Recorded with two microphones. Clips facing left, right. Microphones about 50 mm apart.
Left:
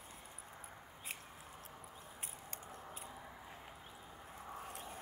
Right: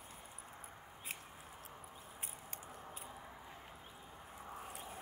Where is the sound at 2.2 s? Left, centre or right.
Centre.